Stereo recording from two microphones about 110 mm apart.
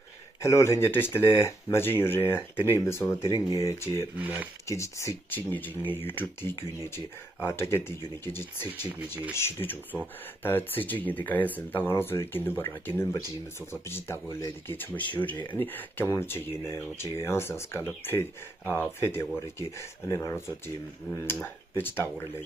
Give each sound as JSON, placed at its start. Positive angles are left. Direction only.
{"t": 0.4, "sound": "speech", "side_deg": 25}
{"t": 4.2, "sound": "speech", "side_deg": -15}
{"t": 4.6, "sound": "speech", "side_deg": 25}
{"t": 8.6, "sound": "speech", "side_deg": -15}
{"t": 9.3, "sound": "speech", "side_deg": 20}